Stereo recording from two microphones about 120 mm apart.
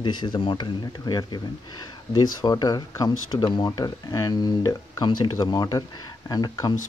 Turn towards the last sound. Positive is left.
turn(degrees=30)  # may be behind; listen again after turning